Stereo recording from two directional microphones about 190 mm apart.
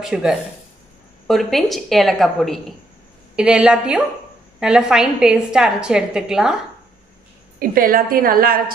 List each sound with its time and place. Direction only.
0.0 s a woman's voice: 5° right (ahead or behind)
7.5 s a woman's voice: 50° right (ahead or behind)